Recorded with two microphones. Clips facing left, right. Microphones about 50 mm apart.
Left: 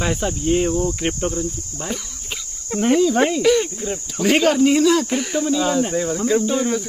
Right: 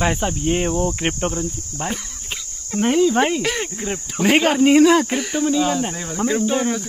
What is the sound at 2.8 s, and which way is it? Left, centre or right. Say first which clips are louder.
Cricket: even; centre.